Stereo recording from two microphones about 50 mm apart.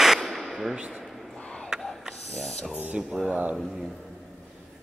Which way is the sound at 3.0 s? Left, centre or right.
Centre.